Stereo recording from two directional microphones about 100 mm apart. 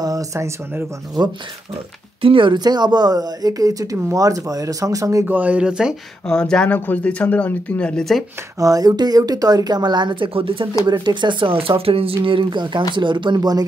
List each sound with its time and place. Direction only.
0.0 s speech: 35° right (ahead or behind)
2.2 s speech: 55° right (ahead or behind); by 5.2 s 35° right (ahead or behind)
5.2 s speech: 15° right (ahead or behind)
6.2 s speech: 5° left (ahead or behind)
8.5 s a woman's voice: 35° right (ahead or behind); by 10.8 s 60° right (ahead or behind)
10.9 s speech: 50° right (ahead or behind); by 12.2 s 70° right (ahead or behind)
12.2 s a woman's voice: 55° right (ahead or behind)